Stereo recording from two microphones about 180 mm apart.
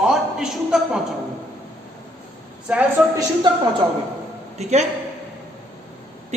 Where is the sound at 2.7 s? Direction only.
5° right (ahead or behind).